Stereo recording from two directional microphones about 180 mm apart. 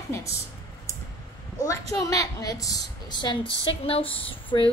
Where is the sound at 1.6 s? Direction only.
20° left (ahead or behind).